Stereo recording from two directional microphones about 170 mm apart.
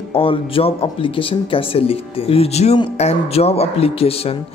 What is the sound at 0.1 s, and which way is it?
Speech, 30° left (ahead or behind).